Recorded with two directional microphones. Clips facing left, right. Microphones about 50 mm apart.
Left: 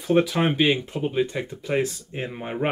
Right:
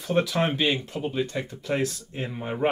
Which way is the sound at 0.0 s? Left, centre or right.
Centre.